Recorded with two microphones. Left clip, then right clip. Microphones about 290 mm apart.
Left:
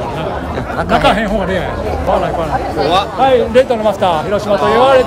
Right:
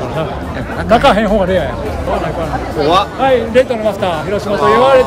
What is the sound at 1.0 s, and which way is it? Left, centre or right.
Speech, centre.